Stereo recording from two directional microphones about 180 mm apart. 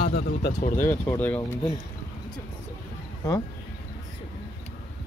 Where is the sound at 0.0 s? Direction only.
60° left (ahead or behind).